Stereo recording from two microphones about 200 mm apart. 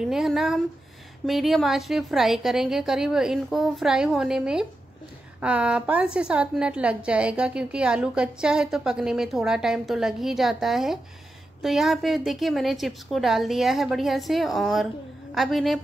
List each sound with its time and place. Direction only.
0.0 s a woman's voice: centre (ahead or behind)